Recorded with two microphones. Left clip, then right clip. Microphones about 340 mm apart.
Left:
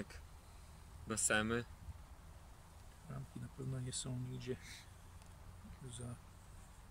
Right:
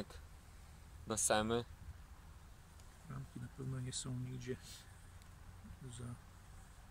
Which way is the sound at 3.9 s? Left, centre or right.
Centre.